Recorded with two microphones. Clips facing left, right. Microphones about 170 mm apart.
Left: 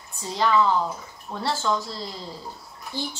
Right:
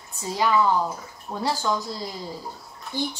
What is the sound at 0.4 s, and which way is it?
A woman's voice, 10° right (ahead or behind).